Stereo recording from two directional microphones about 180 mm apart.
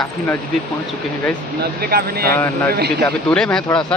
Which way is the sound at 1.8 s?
60° right (ahead or behind).